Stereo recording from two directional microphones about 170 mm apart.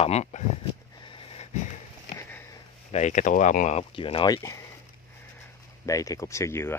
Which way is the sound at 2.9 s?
45° left (ahead or behind).